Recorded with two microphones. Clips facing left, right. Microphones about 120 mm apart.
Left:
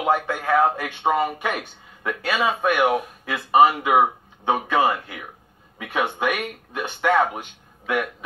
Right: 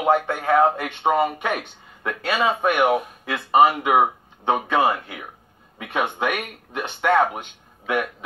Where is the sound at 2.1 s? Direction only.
5° left (ahead or behind).